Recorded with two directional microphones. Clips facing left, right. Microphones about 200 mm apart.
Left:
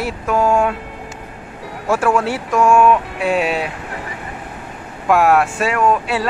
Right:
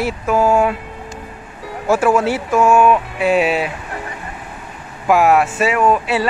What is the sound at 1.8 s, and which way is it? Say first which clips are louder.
Speech: right 2 dB; 5° right (ahead or behind).